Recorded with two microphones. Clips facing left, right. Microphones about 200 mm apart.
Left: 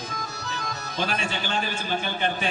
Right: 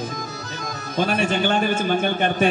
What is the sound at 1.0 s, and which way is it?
A man's voice, 55° right (ahead or behind).